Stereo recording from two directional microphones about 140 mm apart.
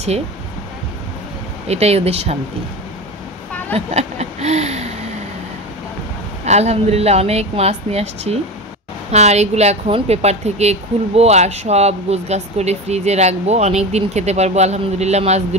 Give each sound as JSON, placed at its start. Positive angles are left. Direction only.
{"t": 1.7, "sound": "a woman's voice", "side_deg": -50}
{"t": 3.7, "sound": "speech", "side_deg": -50}
{"t": 6.4, "sound": "a woman's voice", "side_deg": -50}